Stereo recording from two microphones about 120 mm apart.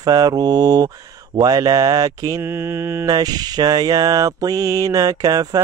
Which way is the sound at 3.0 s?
35° right (ahead or behind).